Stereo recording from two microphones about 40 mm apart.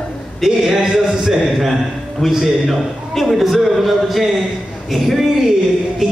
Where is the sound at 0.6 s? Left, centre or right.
Centre.